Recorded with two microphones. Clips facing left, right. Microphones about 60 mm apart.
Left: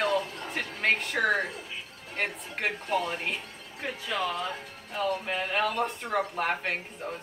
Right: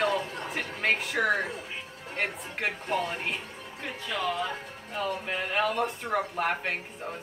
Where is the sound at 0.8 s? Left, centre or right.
Centre.